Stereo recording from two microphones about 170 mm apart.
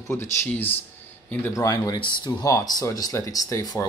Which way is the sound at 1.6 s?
20° left (ahead or behind).